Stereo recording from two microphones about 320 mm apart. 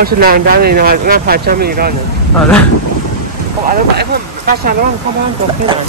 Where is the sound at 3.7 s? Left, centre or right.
Right.